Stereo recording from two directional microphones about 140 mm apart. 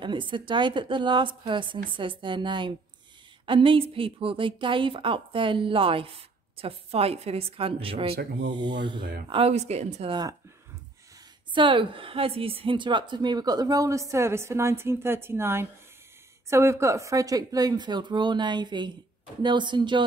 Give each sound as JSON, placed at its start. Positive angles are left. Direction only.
{"t": 0.0, "sound": "a woman's voice", "side_deg": -35}
{"t": 9.3, "sound": "a woman's voice", "side_deg": -45}
{"t": 11.5, "sound": "a woman's voice", "side_deg": -35}